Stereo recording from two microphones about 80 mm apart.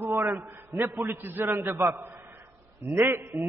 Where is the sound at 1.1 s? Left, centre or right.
Right.